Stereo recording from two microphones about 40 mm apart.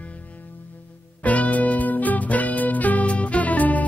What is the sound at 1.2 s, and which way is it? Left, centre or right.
Music, left.